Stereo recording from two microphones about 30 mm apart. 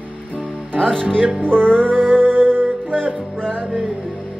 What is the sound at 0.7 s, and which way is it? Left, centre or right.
Speech, left.